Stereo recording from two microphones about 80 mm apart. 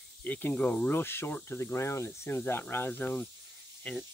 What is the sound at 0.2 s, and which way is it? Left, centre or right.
Speech, centre.